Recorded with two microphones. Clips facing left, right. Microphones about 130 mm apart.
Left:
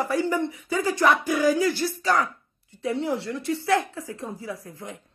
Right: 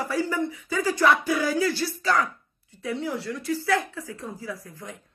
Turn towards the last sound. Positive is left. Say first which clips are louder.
# left 1 dB
turn(degrees=25)  # may be behind; listen again after turning